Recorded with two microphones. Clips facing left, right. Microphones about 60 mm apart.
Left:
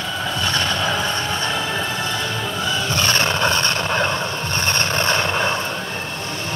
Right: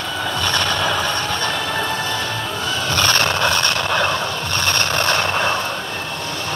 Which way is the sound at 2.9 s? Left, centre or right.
Centre.